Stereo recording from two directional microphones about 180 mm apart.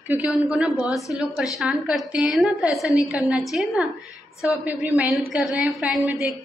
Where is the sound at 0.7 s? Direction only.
20° left (ahead or behind).